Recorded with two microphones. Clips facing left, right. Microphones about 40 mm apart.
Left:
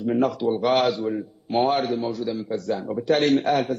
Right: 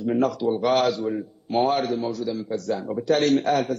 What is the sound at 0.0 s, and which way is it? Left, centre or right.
A man's voice, centre.